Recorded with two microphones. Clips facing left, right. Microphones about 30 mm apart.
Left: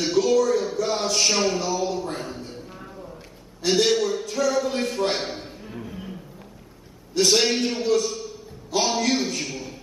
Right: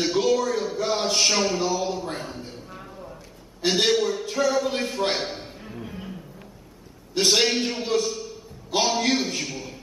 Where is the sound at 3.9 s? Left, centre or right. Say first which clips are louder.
Even; centre.